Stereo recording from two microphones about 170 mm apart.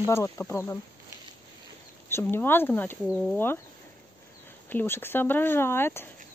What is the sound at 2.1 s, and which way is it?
Speech, 15° left (ahead or behind).